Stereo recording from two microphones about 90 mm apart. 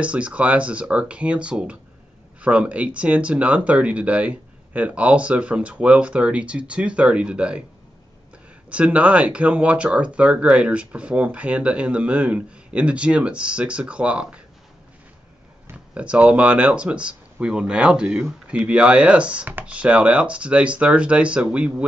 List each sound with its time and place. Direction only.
0.0 s speech: 15° right (ahead or behind)
8.6 s speech: 15° right (ahead or behind)
15.7 s speech: 15° right (ahead or behind)